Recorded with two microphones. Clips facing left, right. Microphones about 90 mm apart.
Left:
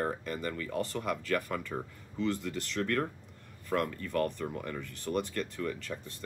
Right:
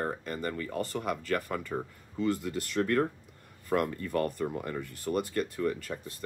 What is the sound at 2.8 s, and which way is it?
Speech, 20° right (ahead or behind).